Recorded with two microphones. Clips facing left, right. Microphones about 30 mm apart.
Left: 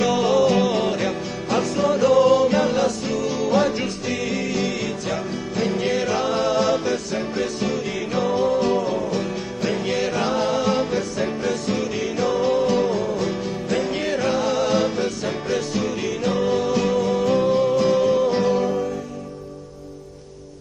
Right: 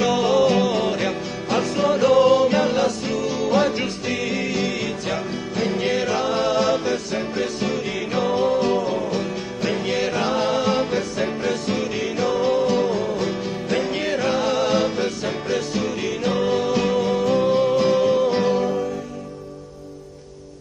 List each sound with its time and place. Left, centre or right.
0.0 s music: centre
0.9 s music: right
6.0 s music: centre; by 8.5 s right
8.5 s music: centre
10.3 s music: right; by 13.0 s centre
13.0 s music: right
14.4 s music: right
16.3 s music: right
17.2 s music: centre
17.5 s music: right
18.6 s music: centre